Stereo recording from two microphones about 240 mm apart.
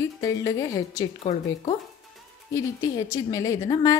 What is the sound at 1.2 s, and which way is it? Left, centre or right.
Speech, left.